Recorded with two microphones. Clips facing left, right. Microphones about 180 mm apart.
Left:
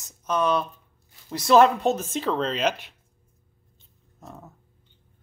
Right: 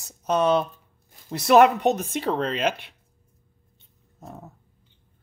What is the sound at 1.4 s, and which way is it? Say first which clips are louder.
Speech: right 1 dB; 65° right (ahead or behind).